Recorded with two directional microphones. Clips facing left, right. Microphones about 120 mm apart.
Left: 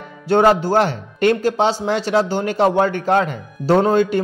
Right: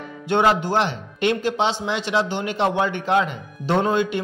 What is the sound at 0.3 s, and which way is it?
Speech, 40° left (ahead or behind).